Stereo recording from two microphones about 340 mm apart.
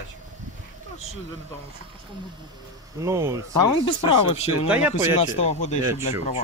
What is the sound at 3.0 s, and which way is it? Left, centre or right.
Speech, centre.